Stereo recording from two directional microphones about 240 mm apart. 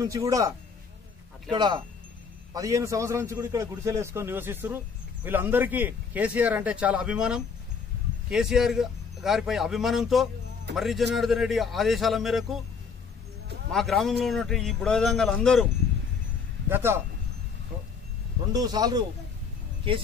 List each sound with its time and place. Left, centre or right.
0.0 s a man's voice: centre
13.7 s speech: centre
16.6 s a man's voice: centre
18.5 s a man's voice: centre